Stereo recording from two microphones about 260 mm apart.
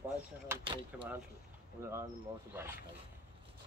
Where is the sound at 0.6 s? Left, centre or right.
Centre.